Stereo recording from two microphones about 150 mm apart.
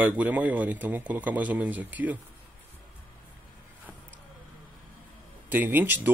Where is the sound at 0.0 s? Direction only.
10° right (ahead or behind).